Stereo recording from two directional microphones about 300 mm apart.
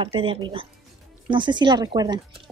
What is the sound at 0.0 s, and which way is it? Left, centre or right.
Speech, centre.